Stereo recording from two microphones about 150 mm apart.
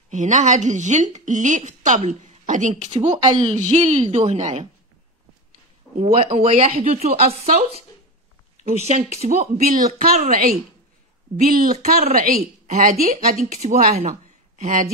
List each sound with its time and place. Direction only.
0.1 s a woman's voice: 55° right (ahead or behind)
3.2 s a woman's voice: 30° right (ahead or behind)
3.5 s a woman's voice: 50° right (ahead or behind)
5.9 s a woman's voice: 40° right (ahead or behind)
8.6 s a woman's voice: 45° right (ahead or behind); by 12.4 s 70° right (ahead or behind)
12.6 s a woman's voice: 50° right (ahead or behind)